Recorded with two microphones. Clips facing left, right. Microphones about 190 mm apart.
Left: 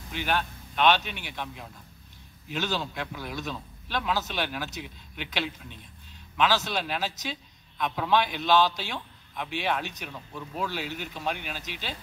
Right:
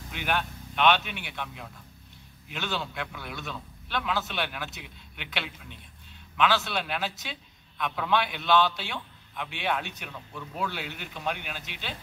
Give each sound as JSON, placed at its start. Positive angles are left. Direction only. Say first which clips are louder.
{"t": 0.1, "sound": "speech", "louder": "left 1 dB", "side_deg": 35}
{"t": 2.5, "sound": "a man's voice", "louder": "left 3 dB", "side_deg": 40}